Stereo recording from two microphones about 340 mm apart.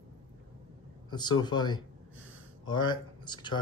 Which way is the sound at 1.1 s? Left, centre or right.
Centre.